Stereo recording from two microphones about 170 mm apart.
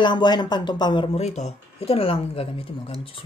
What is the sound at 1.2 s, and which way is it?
Speech, 40° left (ahead or behind).